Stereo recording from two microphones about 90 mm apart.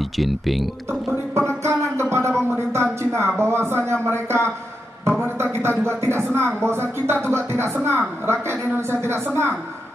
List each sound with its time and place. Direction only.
0.2 s speech: centre (ahead or behind)
1.6 s music: 30° right (ahead or behind)
2.5 s a woman's voice: 30° right (ahead or behind)